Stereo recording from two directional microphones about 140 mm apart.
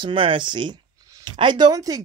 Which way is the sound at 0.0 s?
35° right (ahead or behind).